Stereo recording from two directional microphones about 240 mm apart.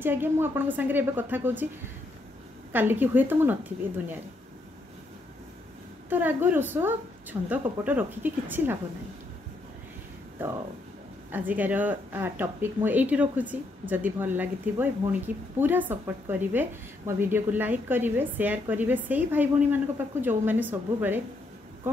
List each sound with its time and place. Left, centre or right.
0.0 s speech: centre
2.7 s speech: centre
6.0 s speech: centre
11.3 s speech: centre